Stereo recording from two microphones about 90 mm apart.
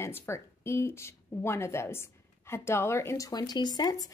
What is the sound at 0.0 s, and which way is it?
Speech, 30° left (ahead or behind).